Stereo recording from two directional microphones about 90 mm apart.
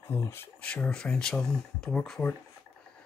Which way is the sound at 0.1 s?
30° left (ahead or behind).